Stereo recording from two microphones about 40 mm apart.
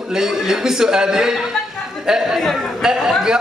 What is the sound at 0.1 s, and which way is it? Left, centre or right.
A man's voice, centre.